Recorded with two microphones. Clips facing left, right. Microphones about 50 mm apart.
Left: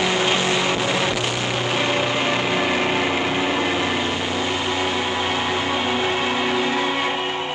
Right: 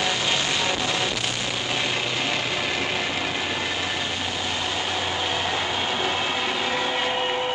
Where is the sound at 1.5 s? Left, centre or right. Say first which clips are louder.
Left 6 dB; left.